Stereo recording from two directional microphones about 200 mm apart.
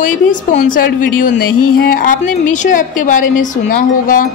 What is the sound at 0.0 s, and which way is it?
A woman's voice, 40° left (ahead or behind).